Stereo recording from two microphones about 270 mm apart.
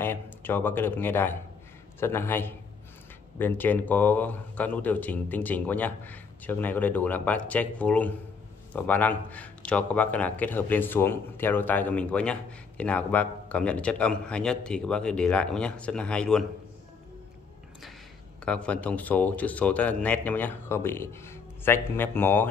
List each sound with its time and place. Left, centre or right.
0.0 s a man's voice: centre
18.4 s speech: centre